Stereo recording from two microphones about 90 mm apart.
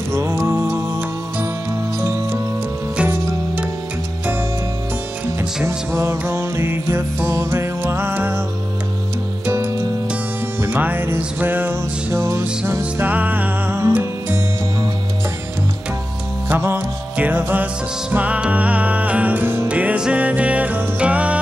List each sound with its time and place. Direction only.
0.1 s music: 30° right (ahead or behind)
5.4 s music: 20° right (ahead or behind)
9.5 s music: 30° right (ahead or behind)
16.4 s music: 25° right (ahead or behind)